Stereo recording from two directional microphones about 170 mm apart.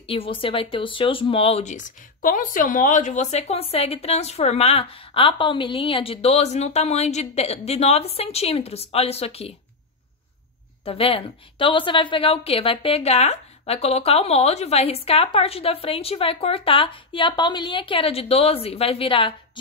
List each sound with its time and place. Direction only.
0.1 s speech: 30° left (ahead or behind)
10.9 s speech: 35° left (ahead or behind)